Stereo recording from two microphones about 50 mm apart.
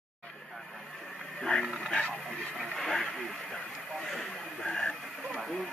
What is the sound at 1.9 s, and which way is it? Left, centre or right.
Music, left.